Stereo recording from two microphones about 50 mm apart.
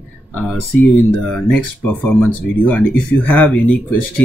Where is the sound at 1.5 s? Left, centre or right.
Left.